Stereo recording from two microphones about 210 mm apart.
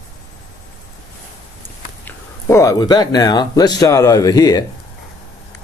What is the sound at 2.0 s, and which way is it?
Speech, 15° left (ahead or behind).